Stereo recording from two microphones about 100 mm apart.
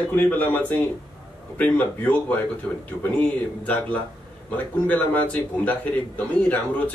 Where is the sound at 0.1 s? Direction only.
15° left (ahead or behind).